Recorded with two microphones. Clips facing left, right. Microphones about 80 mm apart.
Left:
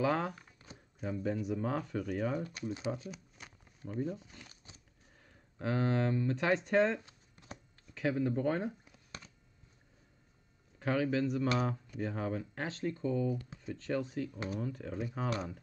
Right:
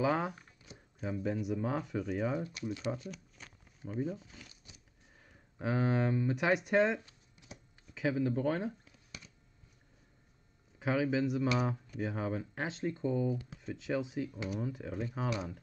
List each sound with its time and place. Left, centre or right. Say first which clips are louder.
0.0 s speech: even; centre
2.9 s shuffling cards: even; centre
3.8 s speech: even; centre
4.5 s a sound: left 1 dB; left
5.2 s speech: right 1 dB; centre
10.8 s speech: even; centre
13.6 s speech: even; centre